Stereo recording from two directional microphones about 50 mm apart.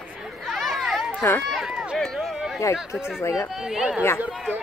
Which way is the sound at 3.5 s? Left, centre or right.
Centre.